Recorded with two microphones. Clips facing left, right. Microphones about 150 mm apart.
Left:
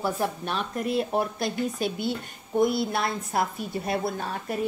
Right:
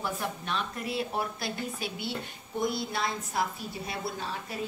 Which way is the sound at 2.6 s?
60° left (ahead or behind).